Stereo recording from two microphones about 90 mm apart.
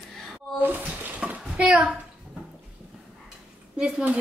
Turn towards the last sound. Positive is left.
turn(degrees=-10)  # may be behind; listen again after turning